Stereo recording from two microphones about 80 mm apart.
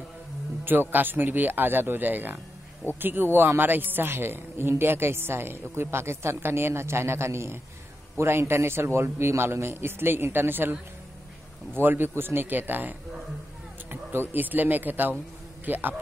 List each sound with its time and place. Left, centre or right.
0.7 s a woman's voice: right